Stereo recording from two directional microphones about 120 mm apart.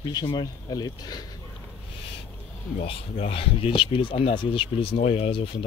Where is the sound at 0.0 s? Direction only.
35° left (ahead or behind).